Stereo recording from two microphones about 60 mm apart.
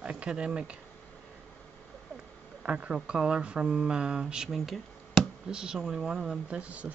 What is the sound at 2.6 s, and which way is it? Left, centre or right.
Speech, centre.